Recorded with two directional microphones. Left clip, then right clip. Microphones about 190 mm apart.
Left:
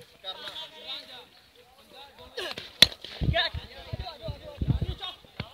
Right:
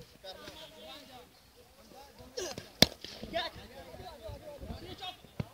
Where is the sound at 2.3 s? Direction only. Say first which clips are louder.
Left 5 dB; 20° right (ahead or behind).